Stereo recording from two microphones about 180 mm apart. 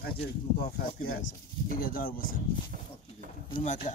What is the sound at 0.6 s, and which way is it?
Speech, 55° left (ahead or behind).